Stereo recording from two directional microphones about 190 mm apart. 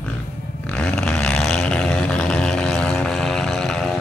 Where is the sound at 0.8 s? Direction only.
5° left (ahead or behind).